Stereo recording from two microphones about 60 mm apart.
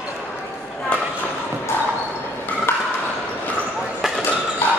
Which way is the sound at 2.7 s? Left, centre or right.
Left.